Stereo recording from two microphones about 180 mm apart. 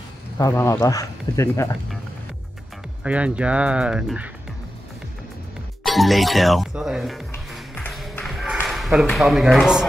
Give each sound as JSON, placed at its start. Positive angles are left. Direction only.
{"t": 0.4, "sound": "speech", "side_deg": 15}
{"t": 3.0, "sound": "speech", "side_deg": -5}
{"t": 5.9, "sound": "speech", "side_deg": 0}
{"t": 7.7, "sound": "music", "side_deg": 5}
{"t": 9.1, "sound": "speech", "side_deg": 0}